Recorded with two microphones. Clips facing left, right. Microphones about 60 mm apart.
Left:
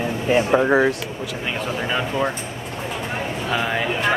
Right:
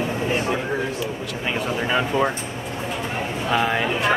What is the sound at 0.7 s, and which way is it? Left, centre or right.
Speech, left.